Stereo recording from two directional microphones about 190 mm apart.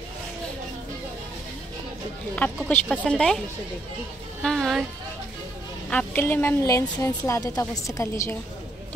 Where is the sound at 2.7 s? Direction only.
5° left (ahead or behind).